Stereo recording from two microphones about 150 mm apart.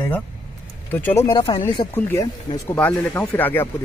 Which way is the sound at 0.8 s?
15° left (ahead or behind).